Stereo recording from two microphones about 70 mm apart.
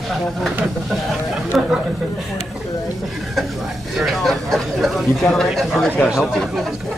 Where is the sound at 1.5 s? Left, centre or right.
Centre.